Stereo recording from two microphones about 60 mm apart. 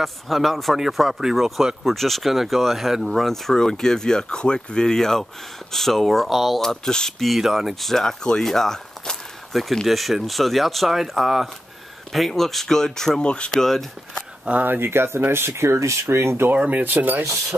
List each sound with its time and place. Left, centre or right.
0.0 s speech: centre
13.5 s speech: centre
14.4 s speech: right
14.7 s speech: right
16.4 s speech: right
17.2 s speech: right